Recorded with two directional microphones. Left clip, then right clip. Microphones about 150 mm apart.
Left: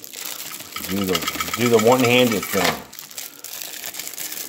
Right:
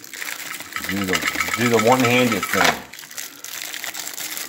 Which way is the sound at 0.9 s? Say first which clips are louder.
Right 1 dB; 25° left (ahead or behind).